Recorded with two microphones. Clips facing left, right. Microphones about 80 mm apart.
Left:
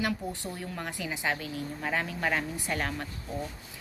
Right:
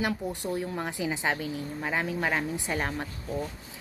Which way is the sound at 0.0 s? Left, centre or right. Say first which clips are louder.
Right 2 dB; right.